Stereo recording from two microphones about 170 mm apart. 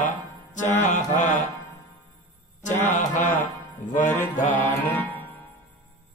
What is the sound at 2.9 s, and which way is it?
Music, 45° left (ahead or behind).